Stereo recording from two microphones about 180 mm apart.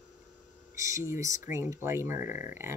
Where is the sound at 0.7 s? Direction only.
15° right (ahead or behind).